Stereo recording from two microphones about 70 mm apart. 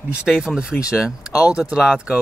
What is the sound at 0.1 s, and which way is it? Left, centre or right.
Speech, centre.